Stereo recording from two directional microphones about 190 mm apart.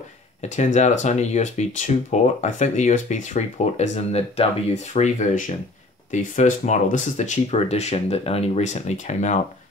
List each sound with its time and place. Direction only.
0.4 s speech: 35° left (ahead or behind)